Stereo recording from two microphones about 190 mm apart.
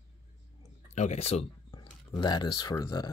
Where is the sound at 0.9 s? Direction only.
35° left (ahead or behind).